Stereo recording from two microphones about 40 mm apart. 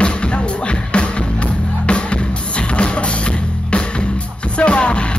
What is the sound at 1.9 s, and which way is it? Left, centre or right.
Music, left.